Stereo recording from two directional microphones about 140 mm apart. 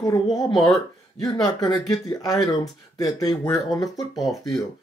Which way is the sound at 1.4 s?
25° left (ahead or behind).